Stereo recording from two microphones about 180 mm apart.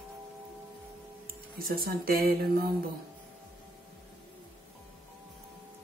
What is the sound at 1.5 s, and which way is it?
A woman's voice, 55° right (ahead or behind).